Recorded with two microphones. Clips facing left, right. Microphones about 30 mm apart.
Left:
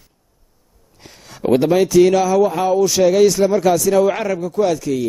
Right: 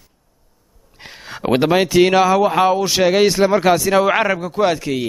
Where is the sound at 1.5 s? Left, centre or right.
Right.